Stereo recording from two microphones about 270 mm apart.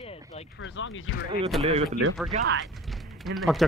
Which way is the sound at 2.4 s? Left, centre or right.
Right.